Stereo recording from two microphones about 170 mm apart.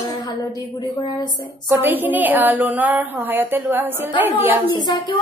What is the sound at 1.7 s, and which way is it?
A woman's voice, 10° right (ahead or behind).